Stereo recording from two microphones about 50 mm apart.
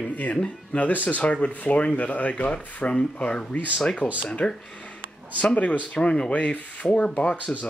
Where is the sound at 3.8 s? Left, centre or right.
Centre.